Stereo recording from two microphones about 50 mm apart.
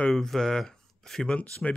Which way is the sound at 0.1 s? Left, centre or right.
Centre.